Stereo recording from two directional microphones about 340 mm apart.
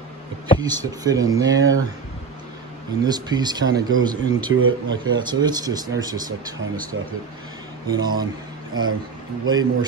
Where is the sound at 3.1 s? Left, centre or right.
Centre.